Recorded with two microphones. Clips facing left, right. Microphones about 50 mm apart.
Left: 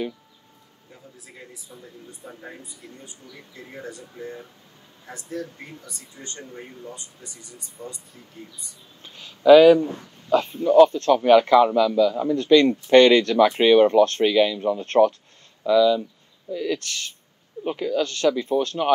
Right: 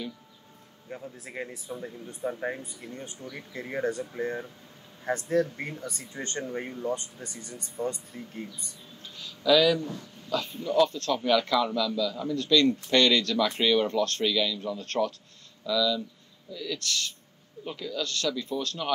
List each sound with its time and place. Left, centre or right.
0.8 s speech: right
9.0 s speech: left